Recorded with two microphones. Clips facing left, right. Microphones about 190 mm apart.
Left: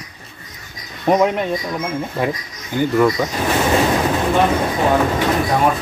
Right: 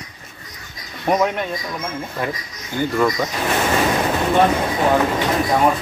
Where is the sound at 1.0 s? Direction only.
25° left (ahead or behind).